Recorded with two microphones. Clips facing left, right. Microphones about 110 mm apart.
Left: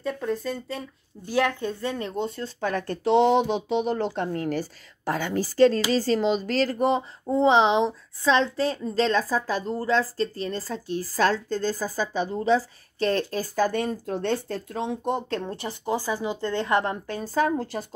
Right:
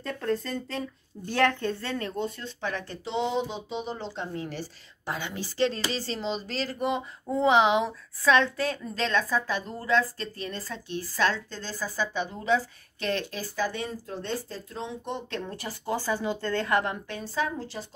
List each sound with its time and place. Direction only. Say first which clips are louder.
0.0 s speech: left 2 dB; 5° left (ahead or behind); by 2.5 s 30° left (ahead or behind)
2.6 s speech: left 7 dB; 50° left (ahead or behind)
7.2 s a woman's voice: left 2 dB; 30° left (ahead or behind)
15.4 s speech: left 4 dB; 25° left (ahead or behind); by 17.8 s 50° left (ahead or behind)